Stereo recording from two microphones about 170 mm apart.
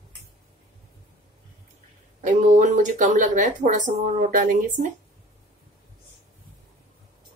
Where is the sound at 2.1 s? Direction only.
45° right (ahead or behind).